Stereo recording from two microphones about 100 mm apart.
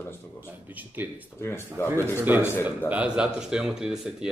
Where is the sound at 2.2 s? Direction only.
20° right (ahead or behind).